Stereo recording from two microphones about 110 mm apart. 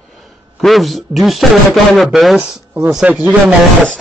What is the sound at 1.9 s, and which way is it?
A man's voice, centre (ahead or behind).